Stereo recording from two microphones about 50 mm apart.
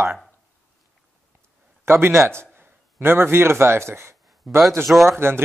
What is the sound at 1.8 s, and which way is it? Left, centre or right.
A man's voice, right.